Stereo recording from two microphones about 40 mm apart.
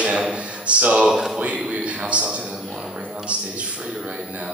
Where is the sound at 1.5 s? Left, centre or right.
Right.